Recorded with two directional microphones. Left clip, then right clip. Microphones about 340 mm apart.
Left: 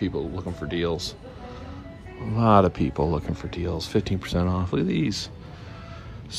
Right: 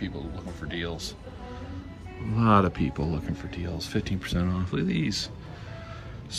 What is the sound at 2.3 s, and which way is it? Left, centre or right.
Speech, centre.